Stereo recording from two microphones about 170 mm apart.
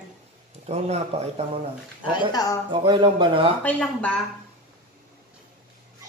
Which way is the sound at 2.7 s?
30° right (ahead or behind).